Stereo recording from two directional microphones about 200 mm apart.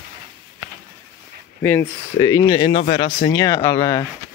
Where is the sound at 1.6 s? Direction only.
10° left (ahead or behind).